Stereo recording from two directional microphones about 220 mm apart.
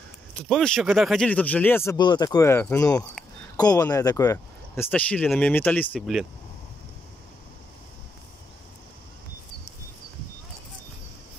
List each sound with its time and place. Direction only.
0.5 s speech: 5° left (ahead or behind)